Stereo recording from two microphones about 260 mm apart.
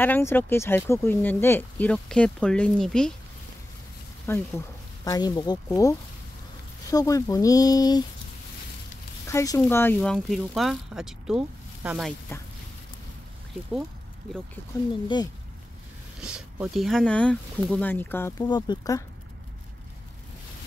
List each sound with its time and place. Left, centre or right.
0.0 s speech: centre
4.3 s speech: centre
9.3 s speech: centre
16.2 s speech: centre